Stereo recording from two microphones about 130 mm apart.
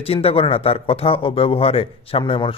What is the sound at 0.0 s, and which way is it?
Speech, 50° left (ahead or behind).